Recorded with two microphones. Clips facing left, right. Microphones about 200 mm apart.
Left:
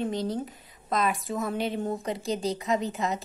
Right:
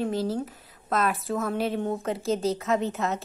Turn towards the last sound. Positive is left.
turn(degrees=0)  # may be behind; listen again after turning